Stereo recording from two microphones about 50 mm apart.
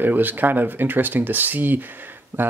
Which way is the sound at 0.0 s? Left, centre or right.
Right.